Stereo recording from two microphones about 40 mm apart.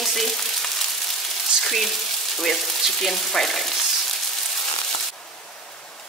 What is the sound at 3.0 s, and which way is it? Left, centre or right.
Frying, centre.